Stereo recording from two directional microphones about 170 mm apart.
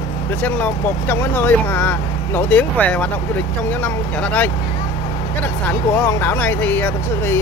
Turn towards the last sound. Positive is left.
turn(degrees=10)  # may be behind; listen again after turning